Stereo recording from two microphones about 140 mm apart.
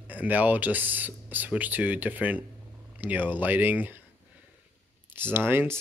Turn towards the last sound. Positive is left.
turn(degrees=-15)  # may be behind; listen again after turning